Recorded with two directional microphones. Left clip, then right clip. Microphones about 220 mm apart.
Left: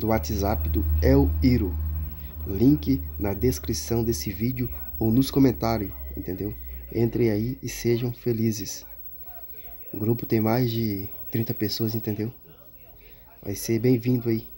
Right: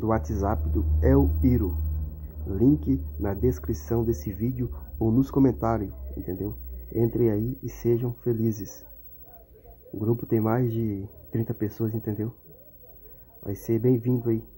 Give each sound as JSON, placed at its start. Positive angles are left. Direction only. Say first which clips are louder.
{"t": 0.0, "sound": "speech", "louder": "left 1 dB", "side_deg": 30}
{"t": 2.8, "sound": "speech", "louder": "left 1 dB", "side_deg": 30}
{"t": 9.9, "sound": "speech", "louder": "left 1 dB", "side_deg": 30}
{"t": 13.4, "sound": "speech", "louder": "left 1 dB", "side_deg": 30}